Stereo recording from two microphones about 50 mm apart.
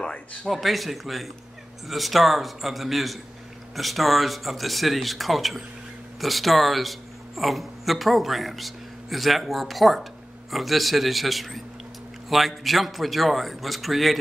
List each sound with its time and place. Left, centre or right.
0.0 s speech: left
0.5 s speech: centre